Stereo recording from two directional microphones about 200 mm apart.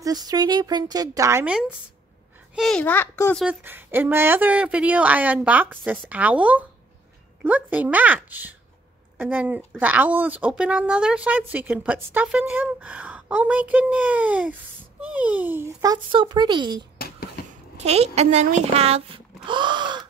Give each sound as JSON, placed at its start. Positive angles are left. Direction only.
{"t": 0.0, "sound": "a woman's voice", "side_deg": -20}
{"t": 3.4, "sound": "speech", "side_deg": -10}